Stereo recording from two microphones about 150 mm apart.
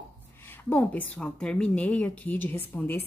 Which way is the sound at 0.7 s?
10° left (ahead or behind).